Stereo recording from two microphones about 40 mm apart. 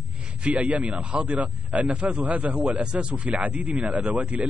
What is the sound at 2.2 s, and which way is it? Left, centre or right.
Speech, right.